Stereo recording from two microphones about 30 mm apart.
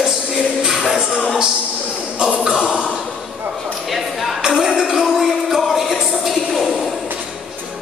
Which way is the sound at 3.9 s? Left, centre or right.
Centre.